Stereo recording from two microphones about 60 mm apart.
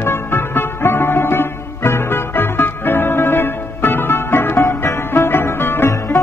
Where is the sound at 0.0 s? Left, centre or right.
Left.